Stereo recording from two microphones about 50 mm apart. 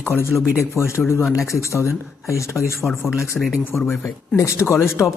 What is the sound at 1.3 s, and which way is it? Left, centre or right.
Speech, left.